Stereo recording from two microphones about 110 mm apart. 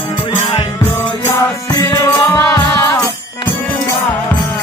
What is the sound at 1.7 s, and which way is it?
Music, 35° left (ahead or behind).